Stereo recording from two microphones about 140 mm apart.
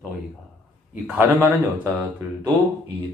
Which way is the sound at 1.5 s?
15° right (ahead or behind).